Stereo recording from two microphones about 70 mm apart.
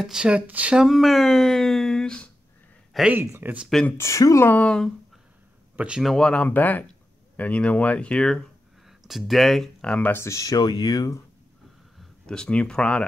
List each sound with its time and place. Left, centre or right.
0.0 s speech: centre
0.7 s speech: centre
2.9 s a man's voice: centre
3.4 s speech: right
4.0 s speech: left
4.6 s speech: centre
5.8 s speech: centre
6.0 s speech: centre
8.8 s speech: centre
9.8 s speech: centre
10.1 s speech: left
12.0 s speech: centre